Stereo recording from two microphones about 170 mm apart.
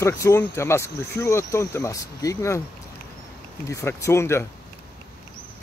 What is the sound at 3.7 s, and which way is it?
Speech, 15° left (ahead or behind).